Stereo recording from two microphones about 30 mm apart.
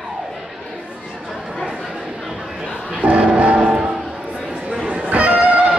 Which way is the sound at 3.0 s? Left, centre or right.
Right.